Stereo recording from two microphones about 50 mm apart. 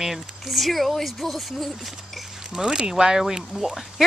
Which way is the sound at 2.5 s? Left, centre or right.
Centre.